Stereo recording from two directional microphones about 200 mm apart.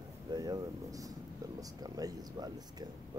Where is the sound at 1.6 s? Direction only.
20° right (ahead or behind).